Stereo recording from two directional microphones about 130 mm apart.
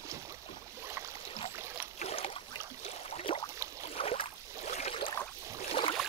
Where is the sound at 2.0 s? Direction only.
50° left (ahead or behind).